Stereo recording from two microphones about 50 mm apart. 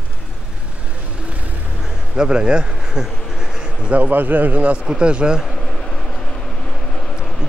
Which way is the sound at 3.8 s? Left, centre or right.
Right.